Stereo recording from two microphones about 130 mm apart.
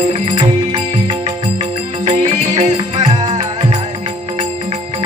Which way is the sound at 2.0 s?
60° right (ahead or behind).